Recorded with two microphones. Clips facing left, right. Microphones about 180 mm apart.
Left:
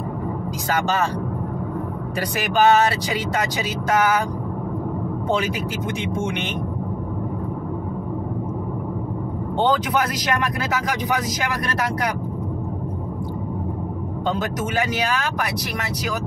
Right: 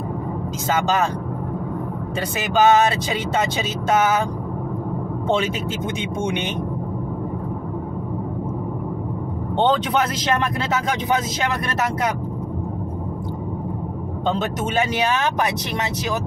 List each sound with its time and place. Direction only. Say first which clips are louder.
0.7 s speech: right 2 dB; 20° right (ahead or behind)
2.3 s speech: right 1 dB; 20° right (ahead or behind)
6.1 s speech: right 4 dB; 20° right (ahead or behind)
9.6 s speech: right 1 dB; 25° right (ahead or behind)
14.2 s speech: right 2 dB; 25° right (ahead or behind)